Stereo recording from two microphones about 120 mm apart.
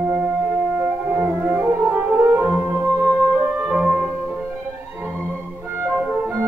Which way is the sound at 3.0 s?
10° left (ahead or behind).